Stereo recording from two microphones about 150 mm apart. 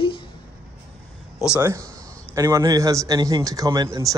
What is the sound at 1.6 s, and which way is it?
A man's voice, 20° right (ahead or behind).